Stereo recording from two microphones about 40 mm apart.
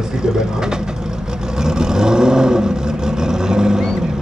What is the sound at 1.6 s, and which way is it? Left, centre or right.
Vehicle, centre.